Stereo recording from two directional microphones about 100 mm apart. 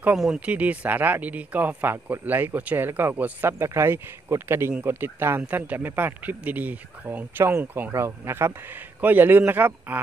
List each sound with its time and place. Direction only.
0.5 s speech: 15° right (ahead or behind)